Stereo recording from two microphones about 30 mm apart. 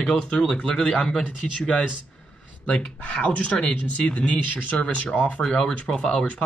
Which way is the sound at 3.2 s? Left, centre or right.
Left.